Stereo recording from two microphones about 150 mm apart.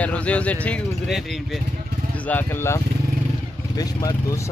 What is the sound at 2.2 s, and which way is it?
Speech, 15° left (ahead or behind).